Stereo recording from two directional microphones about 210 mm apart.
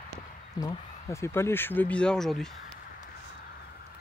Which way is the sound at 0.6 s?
15° left (ahead or behind).